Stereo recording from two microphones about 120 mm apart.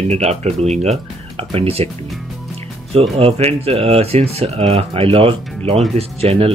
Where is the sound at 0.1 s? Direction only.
65° right (ahead or behind).